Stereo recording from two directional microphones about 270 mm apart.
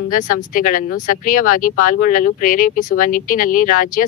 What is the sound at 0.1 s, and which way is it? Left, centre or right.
Speech, left.